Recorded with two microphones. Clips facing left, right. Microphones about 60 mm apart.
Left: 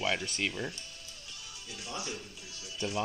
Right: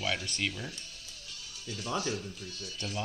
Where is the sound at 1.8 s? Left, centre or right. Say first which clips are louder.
Right 7 dB; right.